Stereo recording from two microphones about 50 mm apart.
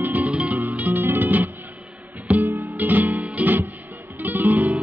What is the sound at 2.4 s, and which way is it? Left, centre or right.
Music, right.